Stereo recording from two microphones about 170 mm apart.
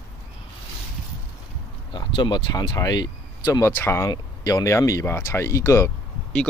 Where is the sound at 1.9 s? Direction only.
25° left (ahead or behind).